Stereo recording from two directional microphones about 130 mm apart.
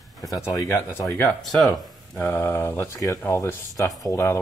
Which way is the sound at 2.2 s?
20° left (ahead or behind).